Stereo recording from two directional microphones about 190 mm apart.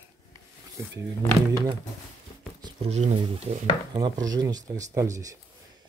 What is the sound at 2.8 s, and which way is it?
Speech, 35° right (ahead or behind).